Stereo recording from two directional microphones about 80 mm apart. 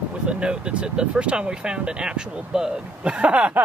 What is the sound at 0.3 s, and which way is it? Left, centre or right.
Speech, centre.